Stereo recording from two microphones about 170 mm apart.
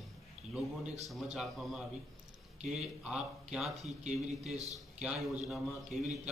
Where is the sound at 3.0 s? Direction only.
5° right (ahead or behind).